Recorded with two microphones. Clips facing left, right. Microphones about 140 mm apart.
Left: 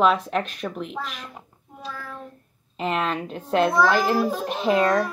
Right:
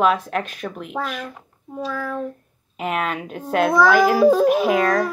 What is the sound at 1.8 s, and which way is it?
Child singing, 90° right.